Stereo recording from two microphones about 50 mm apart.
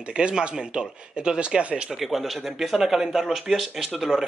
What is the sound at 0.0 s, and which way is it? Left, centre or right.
Speech, right.